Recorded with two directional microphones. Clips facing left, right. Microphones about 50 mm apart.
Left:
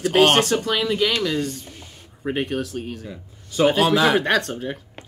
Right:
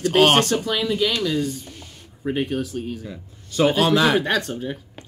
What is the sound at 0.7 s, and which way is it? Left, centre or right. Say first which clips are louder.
Speech: left 1 dB; left.